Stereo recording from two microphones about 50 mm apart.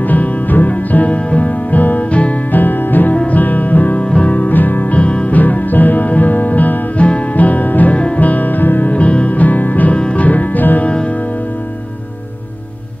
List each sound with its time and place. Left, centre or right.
0.0 s music: left
2.6 s music: left
4.9 s music: left
8.9 s music: left
9.9 s music: left
10.2 s music: left